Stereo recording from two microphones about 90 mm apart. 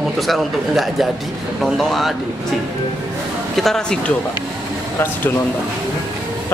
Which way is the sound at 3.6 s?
5° left (ahead or behind).